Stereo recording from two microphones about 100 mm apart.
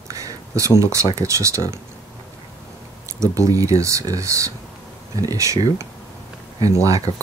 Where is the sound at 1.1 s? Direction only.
30° right (ahead or behind).